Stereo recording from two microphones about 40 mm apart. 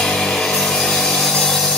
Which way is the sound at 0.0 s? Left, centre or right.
Centre.